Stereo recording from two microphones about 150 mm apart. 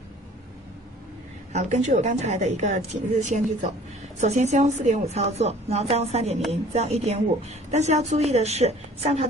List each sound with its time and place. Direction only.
1.5 s a woman's voice: 50° right (ahead or behind)